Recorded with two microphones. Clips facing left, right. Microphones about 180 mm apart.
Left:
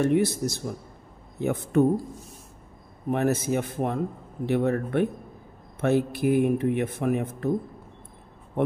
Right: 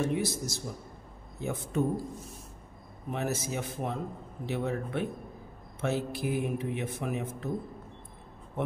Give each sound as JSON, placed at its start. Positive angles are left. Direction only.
{"t": 0.0, "sound": "speech", "side_deg": 60}
{"t": 3.1, "sound": "speech", "side_deg": 55}